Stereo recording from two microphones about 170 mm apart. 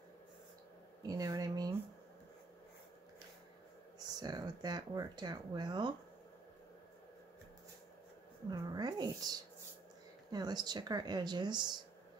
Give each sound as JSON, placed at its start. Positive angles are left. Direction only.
{"t": 1.0, "sound": "a sound", "side_deg": -20}
{"t": 4.2, "sound": "speech", "side_deg": -25}
{"t": 8.5, "sound": "speech", "side_deg": -25}